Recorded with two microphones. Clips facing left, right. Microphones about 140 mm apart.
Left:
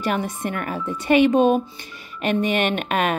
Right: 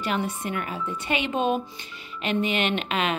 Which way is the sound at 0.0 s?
45° left (ahead or behind).